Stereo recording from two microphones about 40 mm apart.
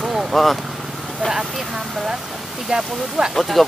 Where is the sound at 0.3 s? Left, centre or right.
Centre.